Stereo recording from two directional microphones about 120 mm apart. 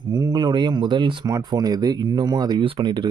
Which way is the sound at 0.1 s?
35° right (ahead or behind).